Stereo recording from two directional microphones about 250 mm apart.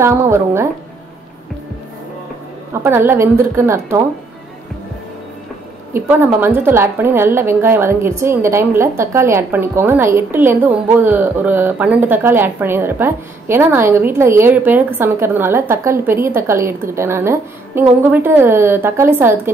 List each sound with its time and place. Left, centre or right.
0.0 s a woman's voice: centre
2.8 s a woman's voice: centre
5.9 s a woman's voice: centre